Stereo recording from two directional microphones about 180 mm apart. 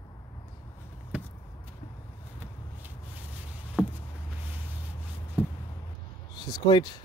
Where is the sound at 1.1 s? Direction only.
5° right (ahead or behind).